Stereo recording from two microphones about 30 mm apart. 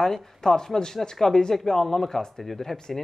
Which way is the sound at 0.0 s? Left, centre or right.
Centre.